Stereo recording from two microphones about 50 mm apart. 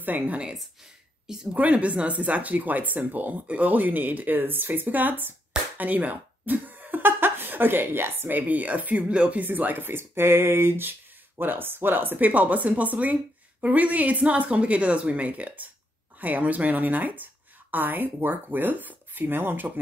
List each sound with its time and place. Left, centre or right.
0.0 s speech: right
1.5 s speech: right
8.4 s speech: right
9.4 s speech: right